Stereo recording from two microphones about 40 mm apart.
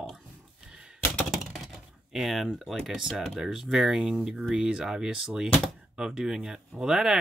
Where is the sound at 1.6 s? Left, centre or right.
Centre.